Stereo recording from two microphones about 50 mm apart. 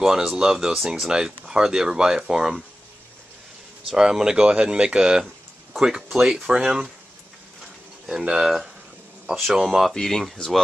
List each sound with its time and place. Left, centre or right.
0.0 s speech: centre
3.9 s speech: centre
8.1 s speech: centre
9.5 s speech: centre
9.9 s speech: centre